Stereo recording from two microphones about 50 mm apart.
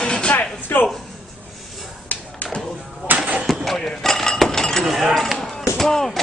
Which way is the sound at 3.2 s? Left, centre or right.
Right.